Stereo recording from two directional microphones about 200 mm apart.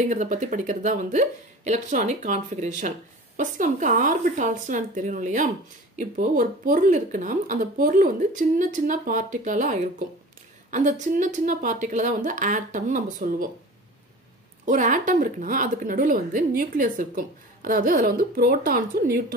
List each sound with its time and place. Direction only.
0.1 s speech: 35° right (ahead or behind)
14.7 s a woman's voice: 40° right (ahead or behind)